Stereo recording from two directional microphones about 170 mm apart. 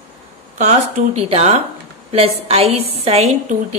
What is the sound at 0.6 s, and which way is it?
A woman's voice, 45° right (ahead or behind).